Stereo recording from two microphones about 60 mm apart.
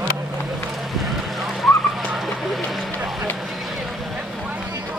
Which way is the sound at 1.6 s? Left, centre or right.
Centre.